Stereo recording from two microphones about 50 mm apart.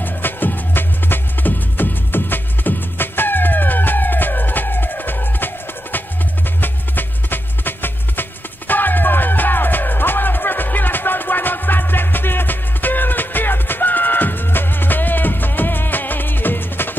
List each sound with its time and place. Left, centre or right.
0.0 s music: left